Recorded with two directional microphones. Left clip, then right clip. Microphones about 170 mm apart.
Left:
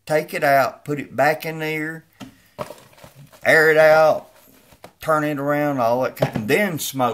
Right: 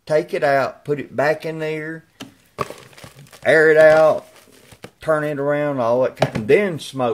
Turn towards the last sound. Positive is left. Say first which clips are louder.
# even
turn(degrees=-20)  # may be behind; listen again after turning